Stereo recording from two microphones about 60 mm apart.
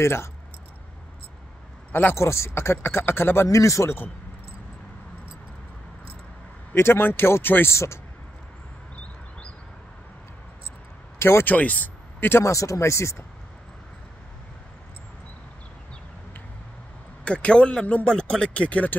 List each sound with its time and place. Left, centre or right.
0.0 s speech: left
1.9 s speech: left
2.1 s speech: left
3.4 s speech: left
6.7 s speech: left
11.1 s speech: left
11.4 s speech: left
12.4 s speech: left
17.2 s a man's voice: centre